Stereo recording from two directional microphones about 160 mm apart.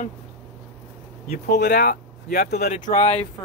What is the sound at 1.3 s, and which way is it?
Speech, 85° left.